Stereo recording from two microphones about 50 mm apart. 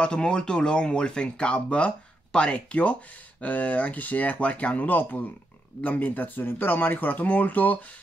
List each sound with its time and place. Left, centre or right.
0.0 s speech: centre